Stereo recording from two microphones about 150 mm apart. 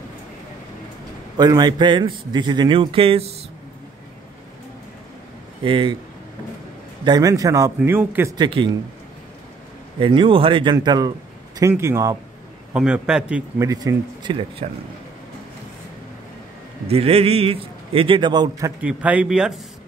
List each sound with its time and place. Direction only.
1.3 s a man's voice: 25° right (ahead or behind)
5.6 s a man's voice: 35° right (ahead or behind)
7.1 s speech: 25° right (ahead or behind)
8.4 s a man's voice: 35° right (ahead or behind)
9.9 s a man's voice: 35° right (ahead or behind)
12.7 s speech: 5° right (ahead or behind)
13.6 s speech: 25° right (ahead or behind)
16.8 s a man's voice: 40° right (ahead or behind)
18.8 s speech: 10° right (ahead or behind)